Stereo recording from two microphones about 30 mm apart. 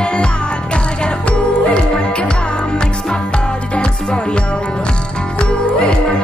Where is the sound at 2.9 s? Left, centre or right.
Centre.